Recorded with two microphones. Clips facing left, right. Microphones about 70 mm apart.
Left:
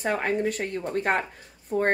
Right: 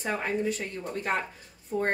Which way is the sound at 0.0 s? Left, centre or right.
Left.